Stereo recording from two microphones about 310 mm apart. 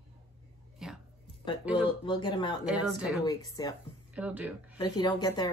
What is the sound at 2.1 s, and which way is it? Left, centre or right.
Speech, centre.